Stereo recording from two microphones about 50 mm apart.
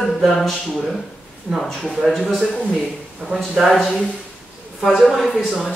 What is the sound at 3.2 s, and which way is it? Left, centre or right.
Speech, centre.